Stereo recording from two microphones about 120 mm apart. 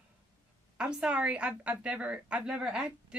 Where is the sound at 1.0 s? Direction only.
10° right (ahead or behind).